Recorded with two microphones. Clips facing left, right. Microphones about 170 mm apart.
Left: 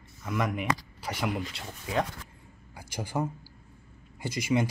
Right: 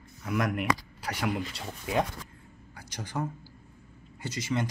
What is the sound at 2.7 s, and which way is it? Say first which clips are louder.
A man's voice: left 3 dB; 10° left (ahead or behind).